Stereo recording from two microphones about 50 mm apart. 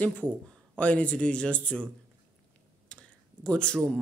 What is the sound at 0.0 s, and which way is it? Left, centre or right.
Speech, left.